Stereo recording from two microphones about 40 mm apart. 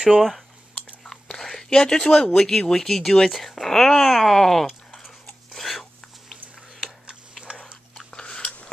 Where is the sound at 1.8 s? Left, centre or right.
Centre.